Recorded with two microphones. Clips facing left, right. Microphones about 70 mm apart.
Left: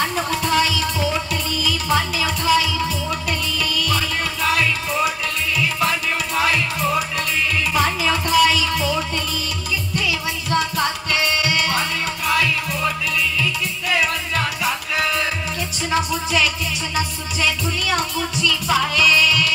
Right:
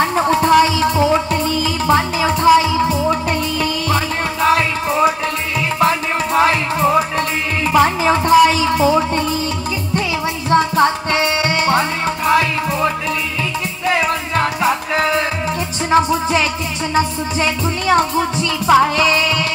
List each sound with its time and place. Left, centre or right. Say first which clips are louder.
0.0 s music: right 7 dB; right
10.5 s music: right 8 dB; right